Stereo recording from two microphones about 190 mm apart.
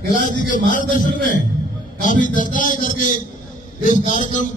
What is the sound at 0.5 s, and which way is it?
A man's voice, 45° left (ahead or behind).